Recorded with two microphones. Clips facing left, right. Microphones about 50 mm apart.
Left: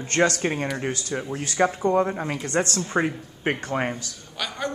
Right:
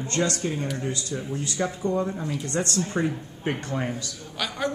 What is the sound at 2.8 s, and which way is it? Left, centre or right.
Speech, left.